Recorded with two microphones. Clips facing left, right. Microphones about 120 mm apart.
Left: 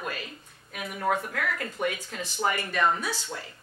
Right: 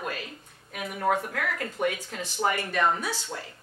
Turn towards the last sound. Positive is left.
turn(degrees=-35)  # may be behind; listen again after turning